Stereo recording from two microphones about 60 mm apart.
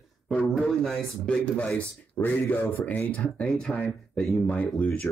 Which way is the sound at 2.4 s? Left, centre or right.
Left.